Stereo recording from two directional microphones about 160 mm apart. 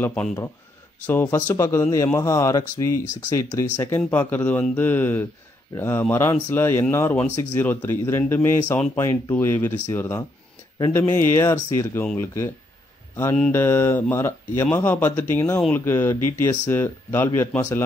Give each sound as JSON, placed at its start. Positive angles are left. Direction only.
{"t": 0.0, "sound": "speech", "side_deg": 10}
{"t": 13.1, "sound": "speech", "side_deg": 15}